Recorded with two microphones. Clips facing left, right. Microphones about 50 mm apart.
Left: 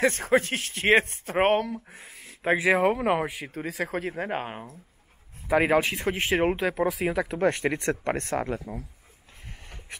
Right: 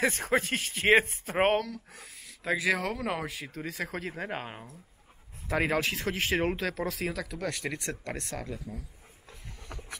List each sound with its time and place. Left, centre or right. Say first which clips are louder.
0.0 s speech: left 5 dB; centre
1.7 s speech: left 6 dB; left
7.1 s speech: left 9 dB; left